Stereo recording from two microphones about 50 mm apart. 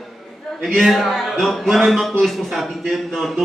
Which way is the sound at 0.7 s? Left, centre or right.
Centre.